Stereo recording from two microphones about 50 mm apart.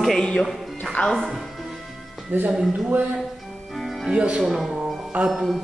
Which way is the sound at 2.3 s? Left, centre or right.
Right.